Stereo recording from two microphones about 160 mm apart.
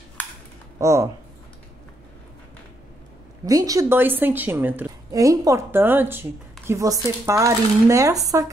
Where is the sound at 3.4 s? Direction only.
20° right (ahead or behind).